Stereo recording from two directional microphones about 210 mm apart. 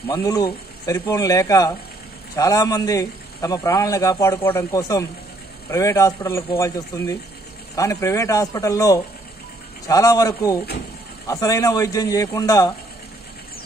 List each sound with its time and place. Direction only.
0.1 s a man's voice: 15° left (ahead or behind)